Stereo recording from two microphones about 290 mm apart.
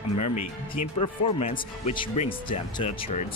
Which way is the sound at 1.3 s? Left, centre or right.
Left.